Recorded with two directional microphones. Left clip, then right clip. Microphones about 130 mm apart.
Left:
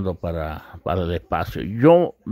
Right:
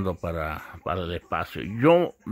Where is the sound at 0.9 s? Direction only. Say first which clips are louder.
Left 5 dB; 45° left (ahead or behind).